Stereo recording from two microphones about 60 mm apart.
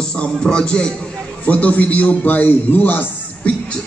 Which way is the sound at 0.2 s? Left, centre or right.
Centre.